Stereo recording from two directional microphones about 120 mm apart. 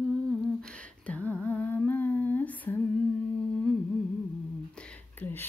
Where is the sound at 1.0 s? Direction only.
10° left (ahead or behind).